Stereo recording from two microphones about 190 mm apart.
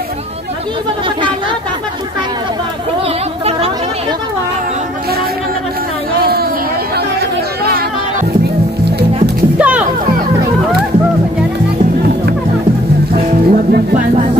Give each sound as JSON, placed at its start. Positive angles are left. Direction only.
{"t": 7.6, "sound": "music", "side_deg": -50}
{"t": 9.6, "sound": "music", "side_deg": -5}
{"t": 13.1, "sound": "music", "side_deg": -50}